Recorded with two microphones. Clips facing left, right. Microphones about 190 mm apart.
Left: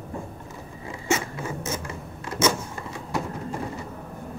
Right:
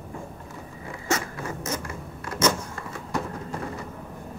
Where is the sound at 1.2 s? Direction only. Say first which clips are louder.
Left 1 dB; 25° left (ahead or behind).